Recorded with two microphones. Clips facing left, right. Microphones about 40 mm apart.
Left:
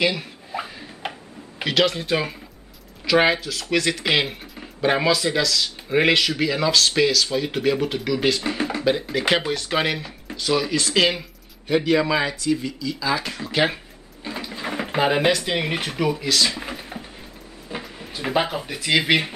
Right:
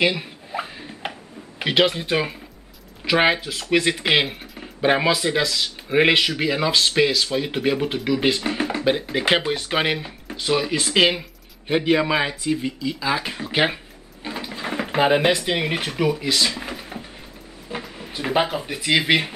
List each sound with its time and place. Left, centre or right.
0.0 s a sound: centre
1.6 s speech: centre
8.4 s speech: centre
8.8 s speech: centre
14.4 s speech: centre
16.3 s a sound: centre
17.6 s speech: centre